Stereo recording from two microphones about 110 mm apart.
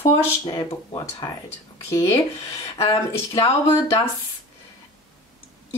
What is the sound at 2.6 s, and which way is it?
Speech, 65° left (ahead or behind).